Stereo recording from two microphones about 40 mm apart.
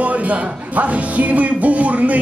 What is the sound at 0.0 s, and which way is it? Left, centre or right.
Speech, right.